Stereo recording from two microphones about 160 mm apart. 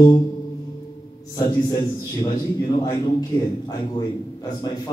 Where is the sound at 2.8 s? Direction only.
25° left (ahead or behind).